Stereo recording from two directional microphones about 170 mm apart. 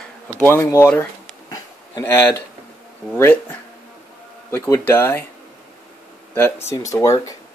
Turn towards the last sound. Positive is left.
turn(degrees=20)  # may be behind; listen again after turning